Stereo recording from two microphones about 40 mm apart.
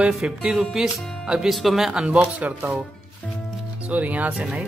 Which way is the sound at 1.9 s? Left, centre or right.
Right.